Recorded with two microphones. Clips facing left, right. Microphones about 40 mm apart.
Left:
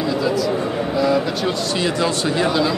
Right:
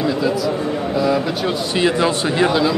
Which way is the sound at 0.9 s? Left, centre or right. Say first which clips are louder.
Even; centre.